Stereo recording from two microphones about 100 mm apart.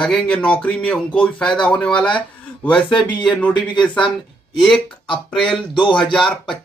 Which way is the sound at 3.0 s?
50° left (ahead or behind).